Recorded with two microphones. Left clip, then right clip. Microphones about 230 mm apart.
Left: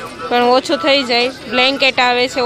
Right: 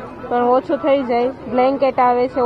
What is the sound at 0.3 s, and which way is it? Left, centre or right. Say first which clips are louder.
Speech: left 3 dB; left.